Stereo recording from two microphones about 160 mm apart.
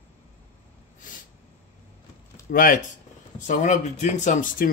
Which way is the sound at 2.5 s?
60° left (ahead or behind).